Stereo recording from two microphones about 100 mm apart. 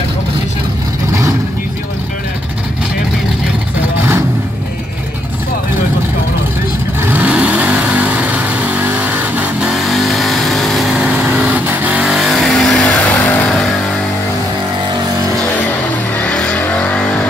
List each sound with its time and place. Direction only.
7.1 s vehicle: 15° right (ahead or behind)
9.7 s vehicle: centre (ahead or behind)
11.2 s vehicle: 15° right (ahead or behind)
12.1 s vehicle: 5° right (ahead or behind); by 13.5 s 15° left (ahead or behind)
16.2 s vehicle: 10° left (ahead or behind)